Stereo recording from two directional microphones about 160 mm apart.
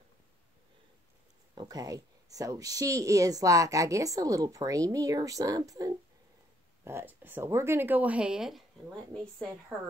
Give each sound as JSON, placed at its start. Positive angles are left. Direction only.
{"t": 1.5, "sound": "a woman's voice", "side_deg": -25}